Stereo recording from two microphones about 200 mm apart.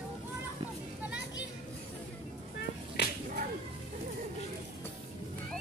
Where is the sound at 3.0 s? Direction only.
55° left (ahead or behind).